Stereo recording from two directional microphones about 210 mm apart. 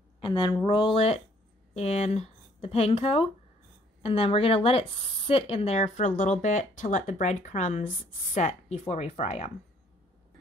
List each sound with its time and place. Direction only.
0.2 s speech: 20° left (ahead or behind)